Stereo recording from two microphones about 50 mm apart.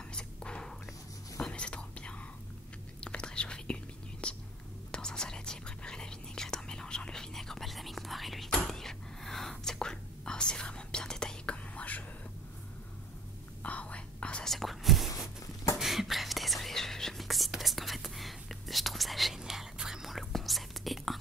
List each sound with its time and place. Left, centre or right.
0.1 s a sound: centre
1.5 s whispering: left
11.5 s whispering: left
13.6 s whispering: left
14.4 s whispering: centre